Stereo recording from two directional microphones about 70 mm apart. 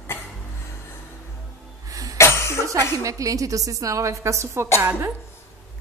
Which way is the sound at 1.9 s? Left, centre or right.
Right.